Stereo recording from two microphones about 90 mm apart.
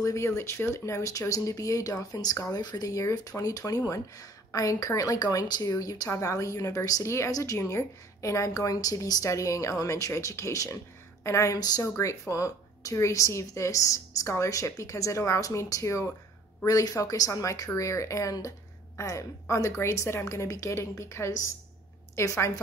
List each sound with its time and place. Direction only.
0.0 s a woman's voice: 35° left (ahead or behind)